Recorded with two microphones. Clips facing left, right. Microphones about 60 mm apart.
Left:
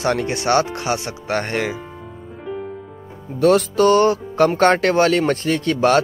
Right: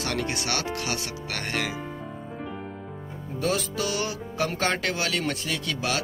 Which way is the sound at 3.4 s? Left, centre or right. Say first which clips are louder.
Left 13 dB; left.